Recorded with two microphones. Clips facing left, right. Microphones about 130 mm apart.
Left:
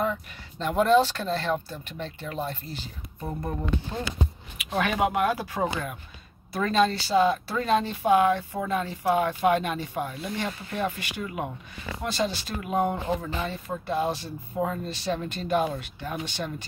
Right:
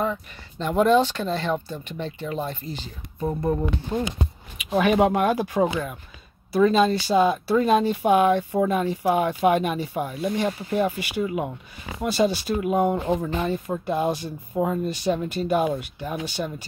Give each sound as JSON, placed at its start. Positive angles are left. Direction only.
{"t": 0.0, "sound": "speech", "side_deg": 0}
{"t": 3.9, "sound": "speech", "side_deg": -15}
{"t": 4.9, "sound": "speech", "side_deg": -30}
{"t": 13.2, "sound": "speech", "side_deg": -20}